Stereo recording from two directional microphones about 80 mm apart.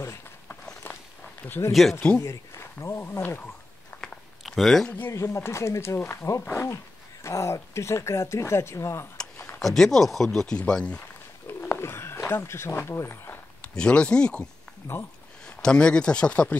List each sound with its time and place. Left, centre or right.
0.8 s walk: left
1.7 s speech: centre
2.1 s speech: left
4.4 s a sound: centre
4.8 s speech: left
5.1 s speech: left
9.6 s speech: centre
11.7 s speech: left
13.6 s speech: centre
15.6 s speech: centre